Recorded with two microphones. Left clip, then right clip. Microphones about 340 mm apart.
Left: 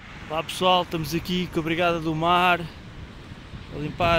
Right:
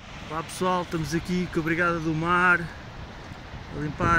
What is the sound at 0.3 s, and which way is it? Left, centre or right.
Speech, centre.